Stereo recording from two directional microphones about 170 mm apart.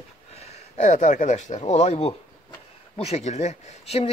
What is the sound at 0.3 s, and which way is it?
Speech, 40° left (ahead or behind).